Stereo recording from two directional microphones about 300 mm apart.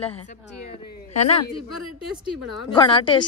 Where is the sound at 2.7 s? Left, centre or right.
Centre.